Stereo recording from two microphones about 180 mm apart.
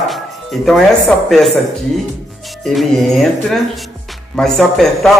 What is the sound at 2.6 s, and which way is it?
Speech, centre (ahead or behind).